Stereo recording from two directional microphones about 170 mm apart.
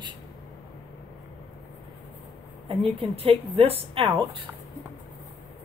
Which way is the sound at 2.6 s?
35° right (ahead or behind).